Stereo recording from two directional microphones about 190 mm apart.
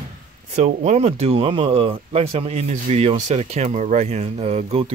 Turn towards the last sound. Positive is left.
turn(degrees=-35)  # may be behind; listen again after turning